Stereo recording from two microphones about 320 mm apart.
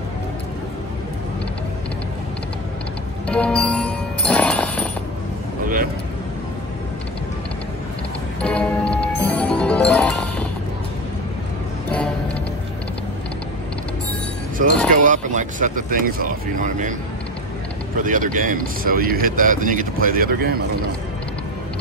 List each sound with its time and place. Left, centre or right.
3.3 s music: centre
8.4 s music: centre
14.6 s chink: right
15.0 s speech: right
18.0 s speech: right